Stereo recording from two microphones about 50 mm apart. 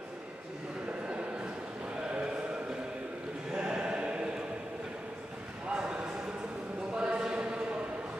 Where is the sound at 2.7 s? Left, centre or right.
Centre.